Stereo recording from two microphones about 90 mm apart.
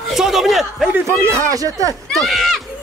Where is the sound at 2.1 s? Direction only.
Centre (ahead or behind).